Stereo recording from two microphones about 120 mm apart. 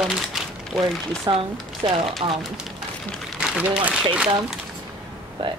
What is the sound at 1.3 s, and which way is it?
Speech, 45° right (ahead or behind).